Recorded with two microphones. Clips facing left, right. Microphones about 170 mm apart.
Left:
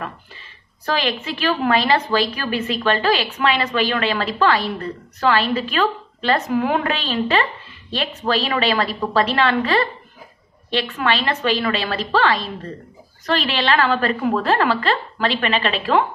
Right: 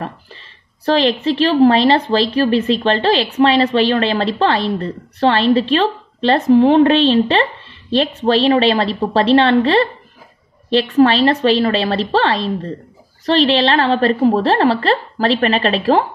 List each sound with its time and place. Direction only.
0.8 s a woman's voice: 35° right (ahead or behind)